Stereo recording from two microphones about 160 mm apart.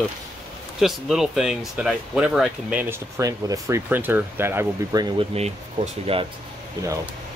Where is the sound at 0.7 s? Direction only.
Centre (ahead or behind).